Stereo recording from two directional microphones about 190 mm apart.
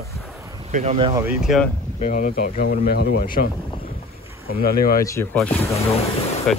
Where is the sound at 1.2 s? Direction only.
5° right (ahead or behind).